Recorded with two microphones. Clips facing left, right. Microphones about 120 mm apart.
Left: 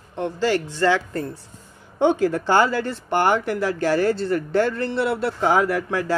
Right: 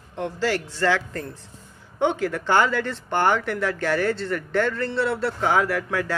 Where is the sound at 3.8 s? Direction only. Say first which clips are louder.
Left 4 dB; 40° left (ahead or behind).